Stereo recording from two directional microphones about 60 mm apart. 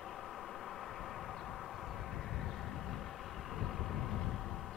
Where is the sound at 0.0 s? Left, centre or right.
Centre.